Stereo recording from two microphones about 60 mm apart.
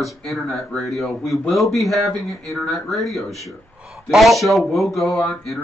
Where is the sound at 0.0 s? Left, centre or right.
Centre.